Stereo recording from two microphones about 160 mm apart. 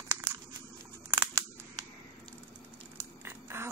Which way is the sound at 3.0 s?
15° right (ahead or behind).